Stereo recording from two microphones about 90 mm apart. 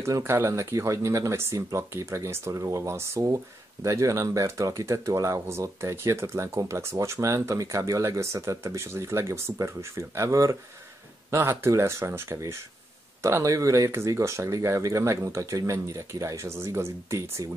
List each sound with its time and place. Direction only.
0.0 s speech: 30° right (ahead or behind)